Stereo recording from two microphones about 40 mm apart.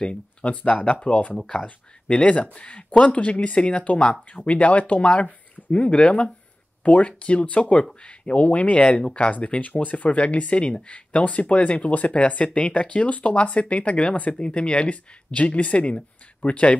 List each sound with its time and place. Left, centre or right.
0.0 s speech: left
0.5 s speech: left
6.8 s speech: left
14.4 s speech: left